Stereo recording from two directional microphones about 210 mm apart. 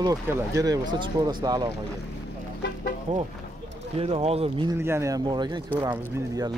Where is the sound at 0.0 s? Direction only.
15° right (ahead or behind).